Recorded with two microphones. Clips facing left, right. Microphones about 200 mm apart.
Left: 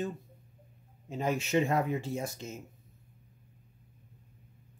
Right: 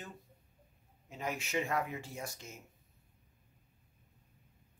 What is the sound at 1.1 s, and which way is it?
Speech, 30° left (ahead or behind).